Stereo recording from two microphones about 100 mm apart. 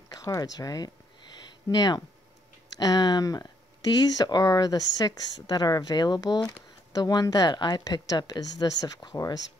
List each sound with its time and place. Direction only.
0.1 s speech: 35° left (ahead or behind)